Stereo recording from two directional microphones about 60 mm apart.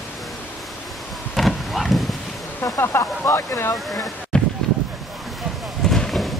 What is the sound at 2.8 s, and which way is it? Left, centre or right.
Speech, left.